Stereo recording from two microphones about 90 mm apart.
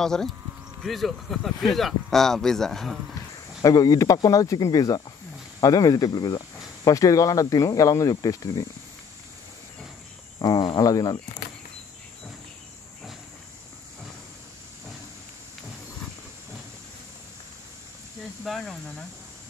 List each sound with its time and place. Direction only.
0.0 s speech: 5° left (ahead or behind)
3.6 s speech: 45° left (ahead or behind)
10.4 s cricket: 45° left (ahead or behind)
10.8 s speech: 45° left (ahead or behind)
18.4 s speech: 5° left (ahead or behind)